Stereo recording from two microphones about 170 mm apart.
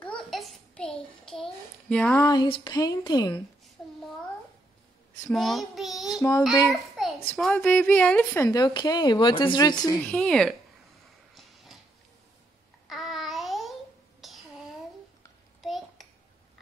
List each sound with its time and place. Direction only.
0.0 s a sound: centre (ahead or behind)
2.2 s speech: 30° left (ahead or behind)
5.3 s child singing: centre (ahead or behind)
6.7 s a child's voice: centre (ahead or behind)
8.5 s speech: 25° left (ahead or behind)
10.1 s speech: 5° left (ahead or behind)
11.3 s a sound: centre (ahead or behind)
12.8 s child singing: centre (ahead or behind)
14.2 s a sound: centre (ahead or behind)